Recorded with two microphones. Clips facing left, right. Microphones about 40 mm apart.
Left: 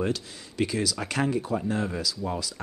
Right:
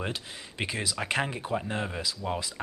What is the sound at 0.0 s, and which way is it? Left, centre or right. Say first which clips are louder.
Speech: left 6 dB; right.